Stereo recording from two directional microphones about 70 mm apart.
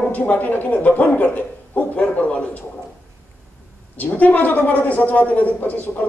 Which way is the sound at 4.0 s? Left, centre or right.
Left.